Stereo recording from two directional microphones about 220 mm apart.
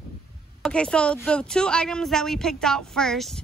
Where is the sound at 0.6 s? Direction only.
5° left (ahead or behind).